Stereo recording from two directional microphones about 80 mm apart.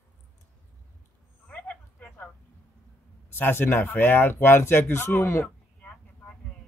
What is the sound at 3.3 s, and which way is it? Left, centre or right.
Speech, left.